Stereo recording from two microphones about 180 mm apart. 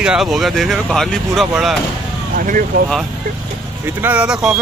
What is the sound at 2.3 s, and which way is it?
Speech, 50° right (ahead or behind).